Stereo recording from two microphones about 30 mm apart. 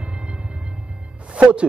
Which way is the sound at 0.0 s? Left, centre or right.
Right.